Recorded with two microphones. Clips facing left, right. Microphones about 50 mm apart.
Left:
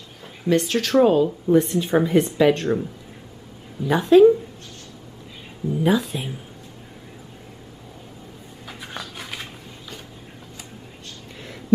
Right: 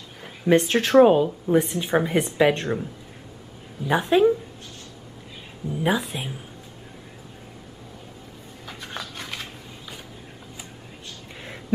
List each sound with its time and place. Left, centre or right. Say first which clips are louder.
0.2 s a woman's voice: right 2 dB; right
5.9 s a woman's voice: left 3 dB; centre
8.6 s a sound: even; centre